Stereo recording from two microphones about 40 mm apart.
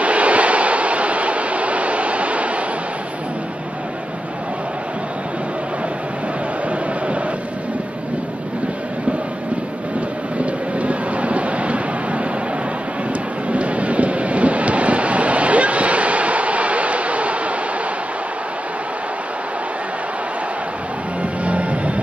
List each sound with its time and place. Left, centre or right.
0.0 s a sound: right
10.3 s vehicle: right
13.5 s waves: right
21.2 s vehicle: right